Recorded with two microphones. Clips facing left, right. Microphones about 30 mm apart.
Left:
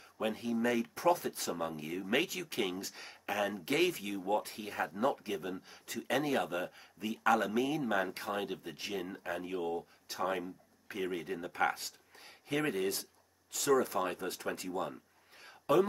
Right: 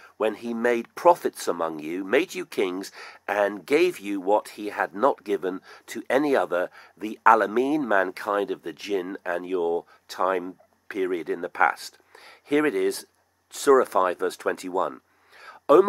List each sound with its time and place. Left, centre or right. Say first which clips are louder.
0.0 s speech: right 10 dB; right